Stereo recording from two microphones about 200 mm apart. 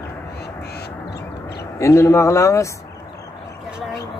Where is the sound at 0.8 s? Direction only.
55° left (ahead or behind).